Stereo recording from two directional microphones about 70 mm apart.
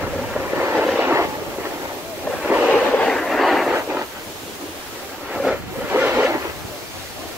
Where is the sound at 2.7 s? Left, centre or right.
Centre.